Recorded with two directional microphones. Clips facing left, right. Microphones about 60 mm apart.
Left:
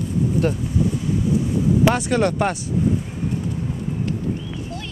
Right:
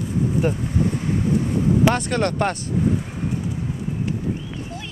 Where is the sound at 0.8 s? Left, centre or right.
Right.